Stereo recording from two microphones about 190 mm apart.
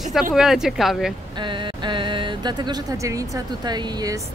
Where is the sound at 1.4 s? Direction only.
25° right (ahead or behind).